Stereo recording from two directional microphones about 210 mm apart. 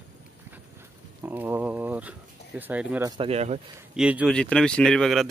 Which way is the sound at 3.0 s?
25° right (ahead or behind).